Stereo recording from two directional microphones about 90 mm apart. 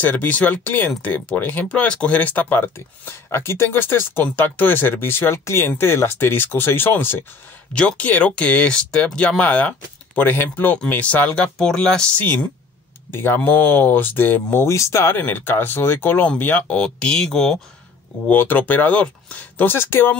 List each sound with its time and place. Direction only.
0.0 s speech: 20° left (ahead or behind)
13.1 s speech: 25° left (ahead or behind); by 17.6 s 5° left (ahead or behind)
18.3 s speech: 20° left (ahead or behind)